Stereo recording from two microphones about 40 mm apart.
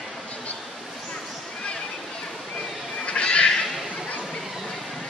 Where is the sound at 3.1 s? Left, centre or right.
Left.